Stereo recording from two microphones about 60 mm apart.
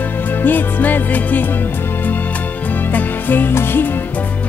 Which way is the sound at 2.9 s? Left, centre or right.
Left.